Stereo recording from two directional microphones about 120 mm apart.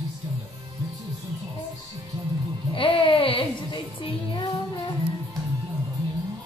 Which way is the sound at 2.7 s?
45° left (ahead or behind).